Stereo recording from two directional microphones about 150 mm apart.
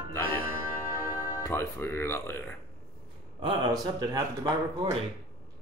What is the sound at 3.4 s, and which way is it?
A man's voice, 30° right (ahead or behind).